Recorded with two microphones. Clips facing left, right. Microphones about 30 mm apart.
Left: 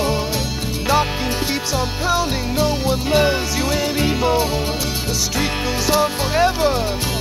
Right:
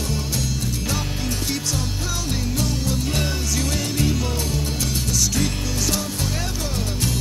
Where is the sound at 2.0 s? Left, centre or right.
Left.